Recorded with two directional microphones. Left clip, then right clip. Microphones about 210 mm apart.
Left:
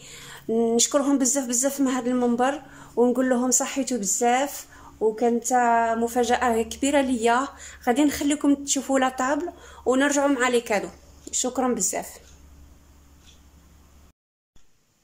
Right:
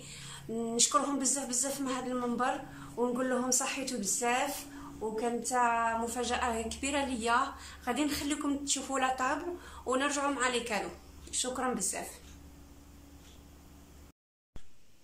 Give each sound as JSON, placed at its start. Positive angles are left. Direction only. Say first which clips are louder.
{"t": 0.0, "sound": "a woman's voice", "louder": "left 8 dB", "side_deg": 40}